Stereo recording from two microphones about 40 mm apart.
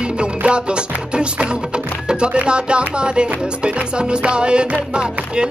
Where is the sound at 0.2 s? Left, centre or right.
Right.